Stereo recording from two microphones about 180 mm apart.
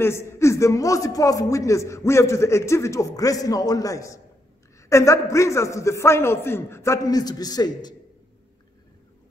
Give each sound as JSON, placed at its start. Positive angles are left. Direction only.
{"t": 0.0, "sound": "a man's voice", "side_deg": 15}